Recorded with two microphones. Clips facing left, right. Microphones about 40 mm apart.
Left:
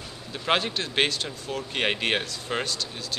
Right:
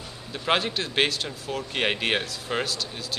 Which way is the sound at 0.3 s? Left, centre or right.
Centre.